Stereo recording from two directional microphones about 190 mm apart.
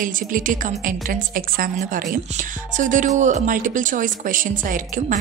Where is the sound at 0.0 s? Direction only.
45° right (ahead or behind).